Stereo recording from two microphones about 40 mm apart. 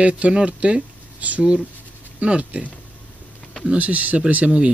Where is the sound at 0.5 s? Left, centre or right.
Right.